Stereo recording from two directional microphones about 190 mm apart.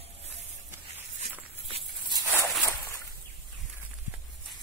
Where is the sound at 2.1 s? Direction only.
15° right (ahead or behind).